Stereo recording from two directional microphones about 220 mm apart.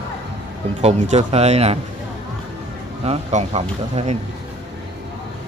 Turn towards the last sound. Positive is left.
turn(degrees=-30)  # may be behind; listen again after turning